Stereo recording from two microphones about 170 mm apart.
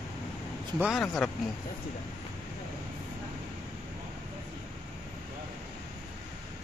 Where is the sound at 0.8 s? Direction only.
Centre (ahead or behind).